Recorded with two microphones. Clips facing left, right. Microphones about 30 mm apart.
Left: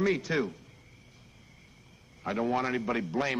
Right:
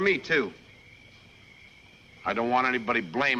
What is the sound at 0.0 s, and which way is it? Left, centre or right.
Speech, right.